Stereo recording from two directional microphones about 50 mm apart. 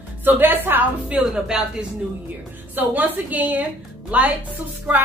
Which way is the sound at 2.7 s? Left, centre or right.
Right.